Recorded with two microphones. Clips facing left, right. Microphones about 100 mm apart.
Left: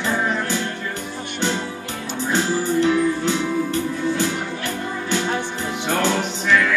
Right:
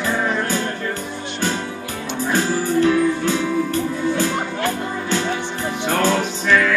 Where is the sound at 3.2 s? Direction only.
20° left (ahead or behind).